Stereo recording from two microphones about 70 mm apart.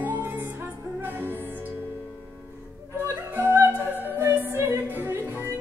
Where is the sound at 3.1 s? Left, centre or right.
Right.